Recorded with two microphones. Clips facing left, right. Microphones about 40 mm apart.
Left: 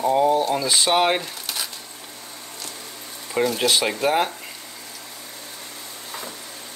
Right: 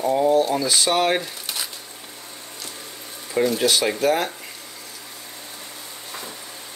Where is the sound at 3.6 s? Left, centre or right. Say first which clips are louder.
Right 1 dB; centre.